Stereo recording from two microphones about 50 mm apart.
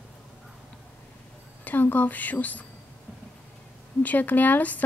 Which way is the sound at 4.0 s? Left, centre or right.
Left.